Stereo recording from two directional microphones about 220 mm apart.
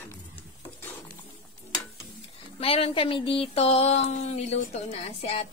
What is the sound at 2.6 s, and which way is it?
Speech, 25° left (ahead or behind).